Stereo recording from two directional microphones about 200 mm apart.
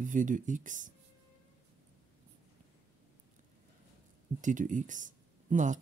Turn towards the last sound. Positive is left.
turn(degrees=-40)  # may be behind; listen again after turning